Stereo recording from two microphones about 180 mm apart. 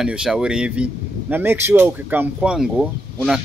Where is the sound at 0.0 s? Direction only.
5° right (ahead or behind).